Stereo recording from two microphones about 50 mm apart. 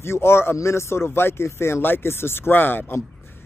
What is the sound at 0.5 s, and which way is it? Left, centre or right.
Speech, left.